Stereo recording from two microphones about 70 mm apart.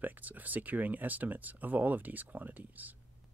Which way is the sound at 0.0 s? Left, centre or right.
Right.